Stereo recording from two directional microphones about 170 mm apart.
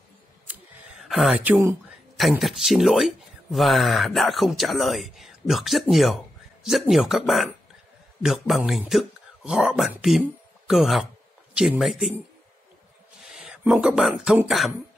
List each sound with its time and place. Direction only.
0.5 s a sound: centre (ahead or behind)
2.1 s speech: centre (ahead or behind)
13.2 s speech: 5° right (ahead or behind)